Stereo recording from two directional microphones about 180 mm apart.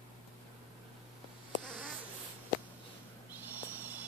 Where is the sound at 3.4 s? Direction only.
10° right (ahead or behind).